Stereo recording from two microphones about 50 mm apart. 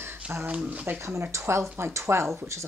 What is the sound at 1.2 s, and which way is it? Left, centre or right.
Speech, right.